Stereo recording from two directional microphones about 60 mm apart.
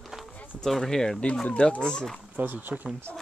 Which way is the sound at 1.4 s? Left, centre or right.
Centre.